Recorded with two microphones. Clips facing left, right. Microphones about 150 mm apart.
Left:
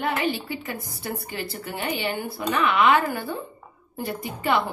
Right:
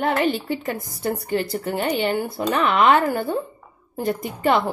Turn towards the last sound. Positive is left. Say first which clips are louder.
# right 4 dB
turn(degrees=-45)  # may be behind; listen again after turning